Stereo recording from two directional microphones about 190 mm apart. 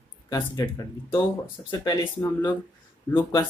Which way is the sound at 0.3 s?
20° left (ahead or behind).